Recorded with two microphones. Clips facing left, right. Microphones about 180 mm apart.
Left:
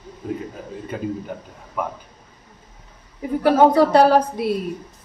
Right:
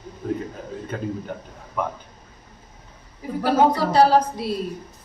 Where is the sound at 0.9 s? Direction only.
10° left (ahead or behind).